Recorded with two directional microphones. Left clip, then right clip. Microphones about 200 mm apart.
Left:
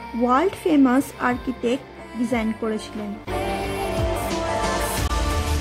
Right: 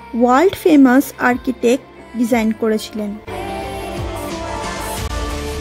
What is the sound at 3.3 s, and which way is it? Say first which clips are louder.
Music: left 1 dB; centre (ahead or behind).